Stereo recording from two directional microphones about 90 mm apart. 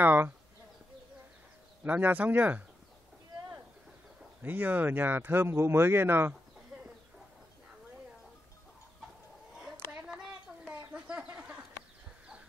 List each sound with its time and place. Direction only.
0.0 s speech: 20° right (ahead or behind)
1.8 s speech: 20° right (ahead or behind)
4.4 s speech: 20° right (ahead or behind)
10.7 s bird: 15° right (ahead or behind)